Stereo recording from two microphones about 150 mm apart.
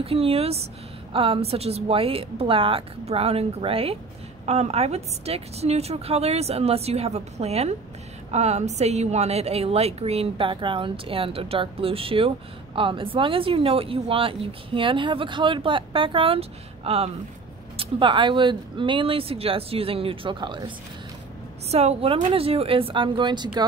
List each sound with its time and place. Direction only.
0.0 s a woman's voice: 40° right (ahead or behind)
21.6 s speech: 45° right (ahead or behind)